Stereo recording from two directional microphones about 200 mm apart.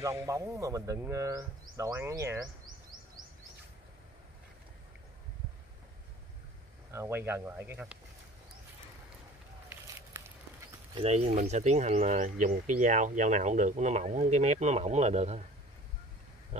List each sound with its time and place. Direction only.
0.0 s speech: 15° right (ahead or behind)
6.9 s speech: 10° right (ahead or behind)
11.0 s speech: 30° right (ahead or behind)